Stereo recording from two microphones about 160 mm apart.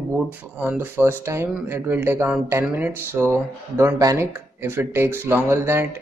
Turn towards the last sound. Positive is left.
turn(degrees=-15)  # may be behind; listen again after turning